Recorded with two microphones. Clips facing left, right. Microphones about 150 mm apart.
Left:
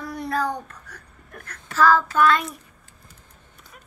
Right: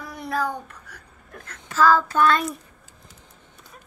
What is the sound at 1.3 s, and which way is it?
Speech, 20° right (ahead or behind).